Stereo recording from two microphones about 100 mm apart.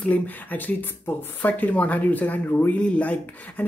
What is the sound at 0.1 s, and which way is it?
Speech, 15° left (ahead or behind).